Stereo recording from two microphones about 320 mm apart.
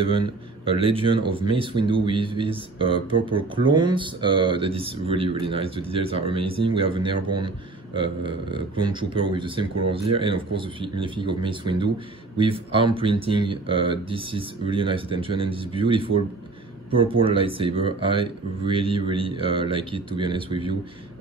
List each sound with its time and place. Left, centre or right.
0.7 s speech: centre